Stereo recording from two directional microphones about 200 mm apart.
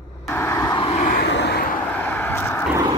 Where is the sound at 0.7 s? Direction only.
30° left (ahead or behind).